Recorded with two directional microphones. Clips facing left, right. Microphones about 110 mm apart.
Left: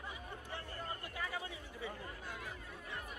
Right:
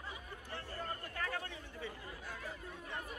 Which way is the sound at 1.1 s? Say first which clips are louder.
Right 2 dB; 10° left (ahead or behind).